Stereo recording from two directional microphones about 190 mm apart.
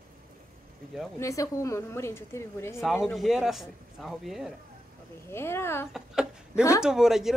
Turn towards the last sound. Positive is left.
turn(degrees=0)  # may be behind; listen again after turning